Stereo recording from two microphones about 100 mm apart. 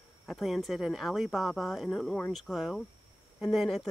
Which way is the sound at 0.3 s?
Centre (ahead or behind).